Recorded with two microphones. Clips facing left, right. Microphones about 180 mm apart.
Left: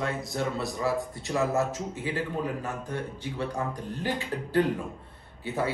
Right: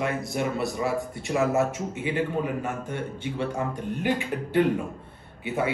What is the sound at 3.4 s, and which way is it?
Speech, centre (ahead or behind).